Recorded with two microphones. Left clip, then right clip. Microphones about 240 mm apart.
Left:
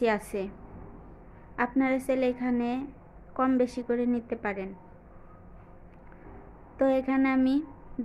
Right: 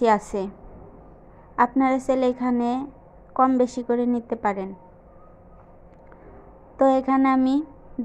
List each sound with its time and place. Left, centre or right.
0.0 s a woman's voice: centre
1.6 s a woman's voice: centre
6.8 s a woman's voice: centre